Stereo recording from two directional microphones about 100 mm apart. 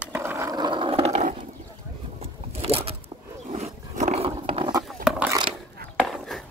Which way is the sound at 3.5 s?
90° right.